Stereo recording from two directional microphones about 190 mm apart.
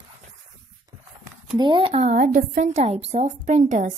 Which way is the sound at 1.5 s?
25° right (ahead or behind).